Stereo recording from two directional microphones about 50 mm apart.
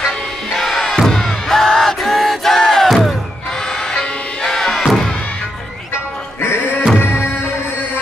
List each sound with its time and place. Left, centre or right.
0.6 s music: centre
3.9 s music: centre
4.5 s music: centre
6.4 s music: left